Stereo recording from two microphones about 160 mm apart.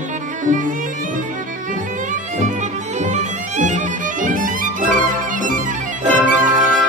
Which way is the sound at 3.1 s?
50° right (ahead or behind).